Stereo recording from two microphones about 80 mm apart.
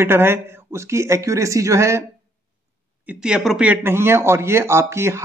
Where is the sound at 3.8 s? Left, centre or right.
Right.